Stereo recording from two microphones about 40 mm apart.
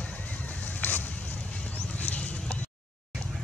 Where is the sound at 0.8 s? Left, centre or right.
Left.